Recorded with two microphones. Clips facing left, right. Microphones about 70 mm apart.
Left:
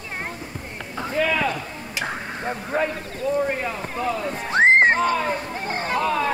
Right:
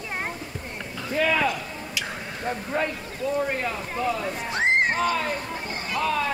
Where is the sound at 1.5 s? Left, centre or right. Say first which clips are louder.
Left 1 dB; left.